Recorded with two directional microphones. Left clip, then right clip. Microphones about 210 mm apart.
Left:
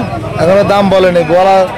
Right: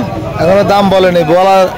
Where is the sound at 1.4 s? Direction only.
25° right (ahead or behind).